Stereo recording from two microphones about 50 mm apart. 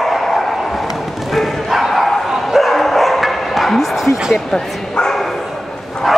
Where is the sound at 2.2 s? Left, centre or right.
Centre.